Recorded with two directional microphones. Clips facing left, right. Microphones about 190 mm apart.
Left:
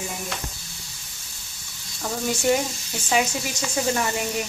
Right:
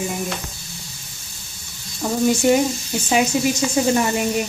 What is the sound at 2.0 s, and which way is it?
A woman's voice, 20° right (ahead or behind).